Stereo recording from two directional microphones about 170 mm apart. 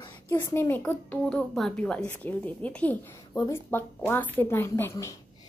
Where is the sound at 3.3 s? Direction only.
20° left (ahead or behind).